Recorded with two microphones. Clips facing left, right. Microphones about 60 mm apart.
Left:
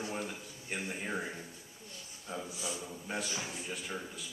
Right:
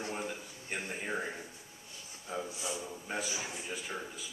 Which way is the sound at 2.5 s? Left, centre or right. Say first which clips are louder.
Right 1 dB; centre.